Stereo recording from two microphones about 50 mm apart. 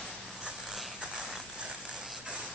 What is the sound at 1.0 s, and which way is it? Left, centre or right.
Mechanisms, centre.